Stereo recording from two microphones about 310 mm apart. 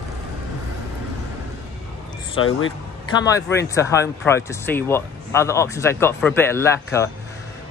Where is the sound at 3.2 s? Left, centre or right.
Centre.